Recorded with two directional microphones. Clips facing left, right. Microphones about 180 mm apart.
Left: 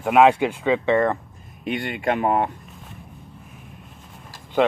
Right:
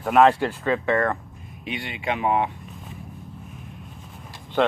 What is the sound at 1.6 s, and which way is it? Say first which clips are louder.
Speech: left 5 dB; 50° left (ahead or behind).